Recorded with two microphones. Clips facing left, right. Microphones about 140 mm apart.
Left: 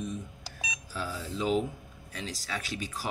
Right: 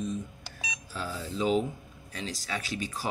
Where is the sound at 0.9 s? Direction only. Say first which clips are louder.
Right 1 dB; centre (ahead or behind).